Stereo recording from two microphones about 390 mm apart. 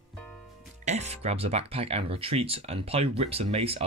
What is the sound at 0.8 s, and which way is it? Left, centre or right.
Speech, centre.